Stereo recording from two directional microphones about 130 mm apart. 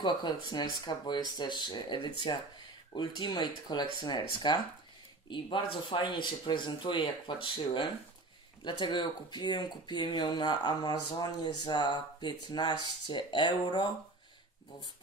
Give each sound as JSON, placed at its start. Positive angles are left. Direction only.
{"t": 0.0, "sound": "speech", "side_deg": 35}